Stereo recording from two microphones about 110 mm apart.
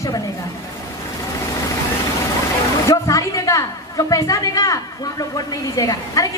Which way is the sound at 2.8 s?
30° left (ahead or behind).